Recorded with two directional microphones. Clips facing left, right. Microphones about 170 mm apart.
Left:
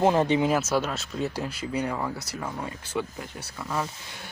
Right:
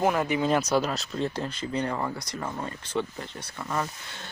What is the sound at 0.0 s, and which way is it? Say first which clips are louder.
Speech: left 3 dB; 25° left (ahead or behind).